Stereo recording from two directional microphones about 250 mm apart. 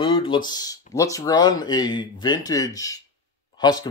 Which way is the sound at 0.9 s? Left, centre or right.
Centre.